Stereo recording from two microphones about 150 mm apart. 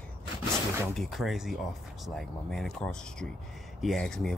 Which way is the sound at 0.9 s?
Centre (ahead or behind).